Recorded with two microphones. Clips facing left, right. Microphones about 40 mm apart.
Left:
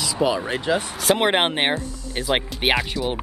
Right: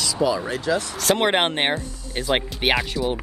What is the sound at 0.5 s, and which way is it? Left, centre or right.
Speech, left.